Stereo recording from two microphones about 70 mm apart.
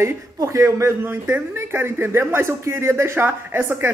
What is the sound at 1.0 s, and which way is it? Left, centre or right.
Speech, right.